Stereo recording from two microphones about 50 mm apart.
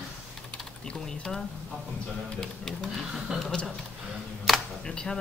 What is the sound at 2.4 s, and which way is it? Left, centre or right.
Speech, centre.